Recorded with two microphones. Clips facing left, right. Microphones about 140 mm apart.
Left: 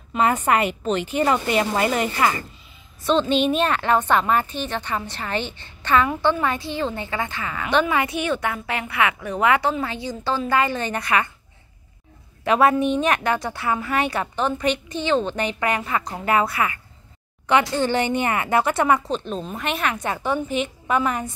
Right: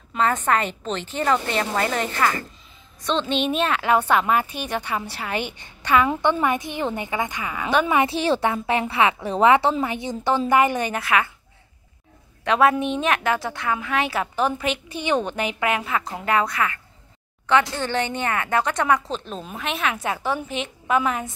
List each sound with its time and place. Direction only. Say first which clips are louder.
0.1 s a woman's voice: left 2 dB; 10° left (ahead or behind); by 7.8 s 15° right (ahead or behind)
7.8 s a woman's voice: right 2 dB; 25° right (ahead or behind); by 11.3 s 5° right (ahead or behind)
12.4 s a woman's voice: left 1 dB; centre (ahead or behind)